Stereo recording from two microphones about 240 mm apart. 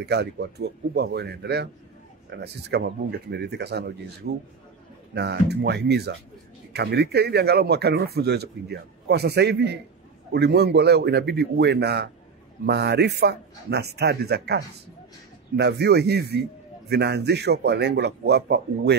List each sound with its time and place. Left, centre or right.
0.0 s speech: right